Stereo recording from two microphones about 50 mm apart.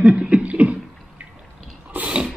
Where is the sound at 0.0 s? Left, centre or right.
Centre.